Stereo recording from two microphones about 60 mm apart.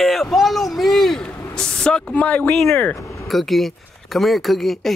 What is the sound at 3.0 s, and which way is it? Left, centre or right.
Vehicle, left.